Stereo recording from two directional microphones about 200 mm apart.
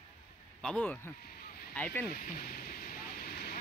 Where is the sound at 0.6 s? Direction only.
5° left (ahead or behind).